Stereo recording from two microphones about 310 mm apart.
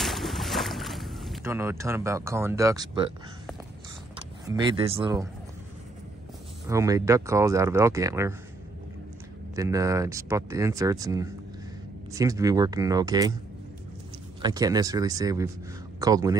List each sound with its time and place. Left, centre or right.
0.0 s boat: centre
4.5 s speech: centre
6.7 s speech: centre
9.6 s speech: centre
14.4 s speech: centre